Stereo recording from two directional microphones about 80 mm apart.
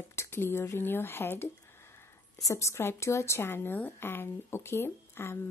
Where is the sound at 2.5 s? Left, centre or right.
Left.